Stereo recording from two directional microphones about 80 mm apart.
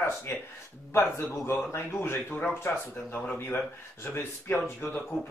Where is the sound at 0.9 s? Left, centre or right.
Left.